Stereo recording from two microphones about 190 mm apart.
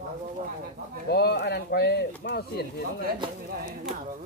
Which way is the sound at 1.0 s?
60° left (ahead or behind).